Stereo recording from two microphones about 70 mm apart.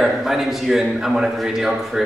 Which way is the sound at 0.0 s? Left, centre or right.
Centre.